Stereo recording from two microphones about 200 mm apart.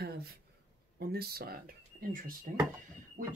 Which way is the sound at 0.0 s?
50° right (ahead or behind).